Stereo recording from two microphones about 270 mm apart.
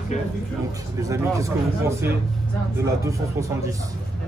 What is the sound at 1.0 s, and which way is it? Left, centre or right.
Speech, centre.